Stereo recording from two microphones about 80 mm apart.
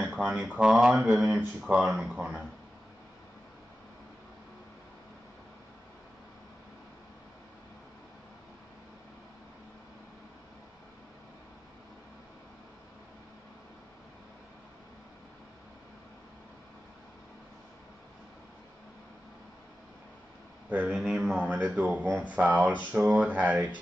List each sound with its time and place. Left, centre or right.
0.0 s speech: centre
20.7 s a sound: centre
21.6 s speech: centre